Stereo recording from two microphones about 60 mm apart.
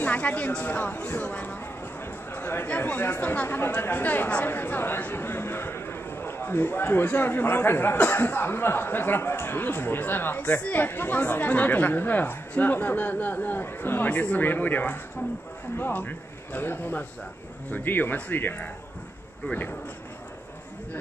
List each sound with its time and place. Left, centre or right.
0.0 s a man's voice: left
2.3 s a sound: left
2.8 s a man's voice: left